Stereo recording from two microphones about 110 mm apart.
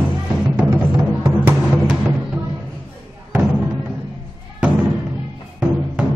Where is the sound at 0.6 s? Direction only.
15° right (ahead or behind).